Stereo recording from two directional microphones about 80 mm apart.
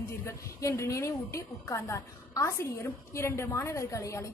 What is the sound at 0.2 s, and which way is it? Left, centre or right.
A woman's voice, left.